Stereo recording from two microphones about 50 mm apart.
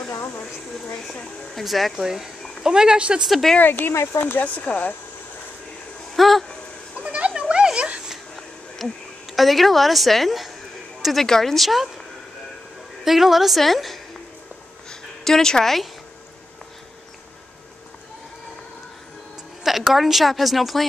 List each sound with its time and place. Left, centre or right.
1.5 s a woman's voice: centre
3.3 s a woman's voice: centre
3.5 s speech: left
3.9 s speech: left
4.2 s speech: left
6.1 s speech: centre
7.0 s a sound: right
8.7 s speech: centre
11.2 s a woman's voice: centre
13.0 s a woman's voice: centre
19.6 s a woman's voice: centre